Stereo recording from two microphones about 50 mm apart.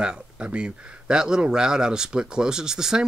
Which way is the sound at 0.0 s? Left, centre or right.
Centre.